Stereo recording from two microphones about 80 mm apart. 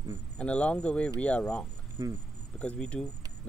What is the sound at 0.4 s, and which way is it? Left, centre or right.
Speech, centre.